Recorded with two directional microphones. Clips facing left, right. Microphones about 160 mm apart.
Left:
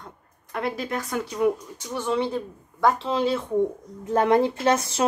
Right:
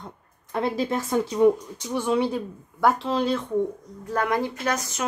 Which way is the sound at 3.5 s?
20° left (ahead or behind).